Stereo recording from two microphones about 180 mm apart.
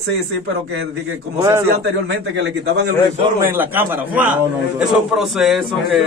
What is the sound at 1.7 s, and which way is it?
A man's voice, 80° right.